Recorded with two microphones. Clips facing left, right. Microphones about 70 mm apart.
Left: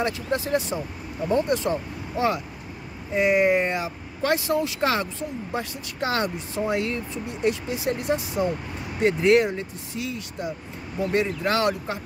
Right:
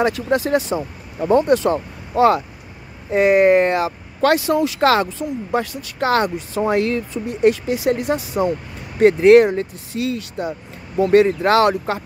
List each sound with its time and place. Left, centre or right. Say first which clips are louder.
0.0 s speech: right 7 dB; right
3.1 s speech: right 7 dB; right
5.5 s speech: right 8 dB; right
7.4 s speech: right 9 dB; right
8.4 s speech: right 5 dB; right
11.0 s speech: right 11 dB; right